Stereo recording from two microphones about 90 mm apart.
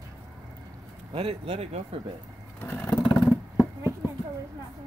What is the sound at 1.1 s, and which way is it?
Speech, 90° right.